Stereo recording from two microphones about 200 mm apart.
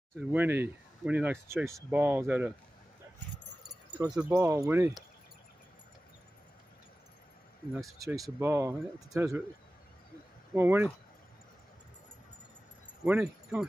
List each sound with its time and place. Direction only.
0.3 s speech: 10° right (ahead or behind)
4.0 s speech: 10° right (ahead or behind)
8.4 s speech: 15° right (ahead or behind)
10.5 s speech: 10° right (ahead or behind)
13.0 s speech: 10° right (ahead or behind)